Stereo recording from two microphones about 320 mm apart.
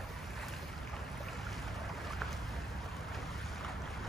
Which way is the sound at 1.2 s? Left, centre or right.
Centre.